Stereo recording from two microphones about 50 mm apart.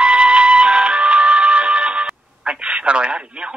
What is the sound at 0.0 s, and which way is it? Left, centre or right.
Music, right.